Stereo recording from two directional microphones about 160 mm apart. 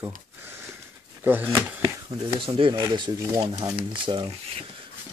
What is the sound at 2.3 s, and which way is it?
Speech, 35° right (ahead or behind).